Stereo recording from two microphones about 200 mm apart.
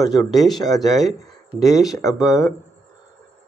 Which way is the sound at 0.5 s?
20° left (ahead or behind).